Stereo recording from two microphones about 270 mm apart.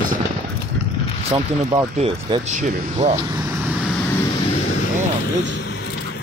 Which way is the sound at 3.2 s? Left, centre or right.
Centre.